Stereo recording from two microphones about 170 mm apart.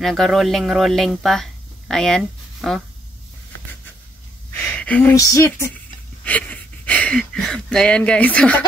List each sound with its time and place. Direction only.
0.0 s speech: centre (ahead or behind)
4.6 s a sound: 10° left (ahead or behind)
5.1 s speech: 20° left (ahead or behind)